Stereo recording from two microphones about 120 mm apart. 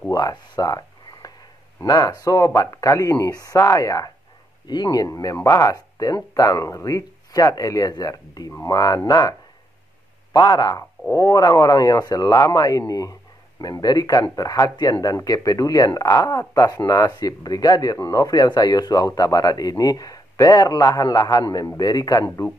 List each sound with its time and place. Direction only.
0.1 s speech: 30° left (ahead or behind)
10.3 s speech: 30° left (ahead or behind)